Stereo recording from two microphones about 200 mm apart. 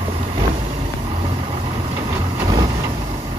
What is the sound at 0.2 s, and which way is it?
Vehicle, 30° right (ahead or behind).